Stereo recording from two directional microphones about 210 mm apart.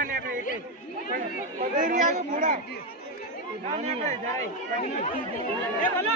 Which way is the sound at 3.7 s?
35° right (ahead or behind).